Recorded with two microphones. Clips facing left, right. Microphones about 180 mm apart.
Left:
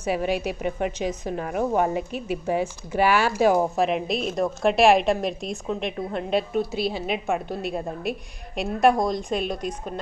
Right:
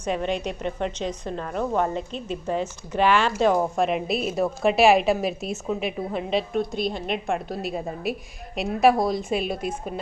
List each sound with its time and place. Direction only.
0.0 s a woman's voice: 10° left (ahead or behind)